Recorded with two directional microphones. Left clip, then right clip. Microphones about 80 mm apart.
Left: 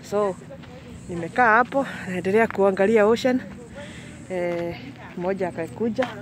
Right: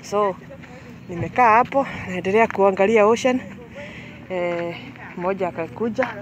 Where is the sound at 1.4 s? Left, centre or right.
Left.